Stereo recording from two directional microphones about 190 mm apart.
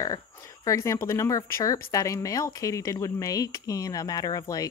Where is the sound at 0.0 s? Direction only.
20° left (ahead or behind).